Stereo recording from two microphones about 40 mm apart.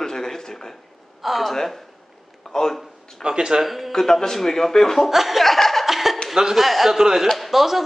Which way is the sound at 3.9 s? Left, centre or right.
Centre.